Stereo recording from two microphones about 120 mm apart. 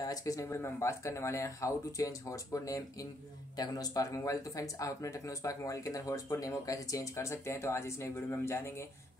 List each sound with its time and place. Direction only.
0.0 s speech: 30° left (ahead or behind)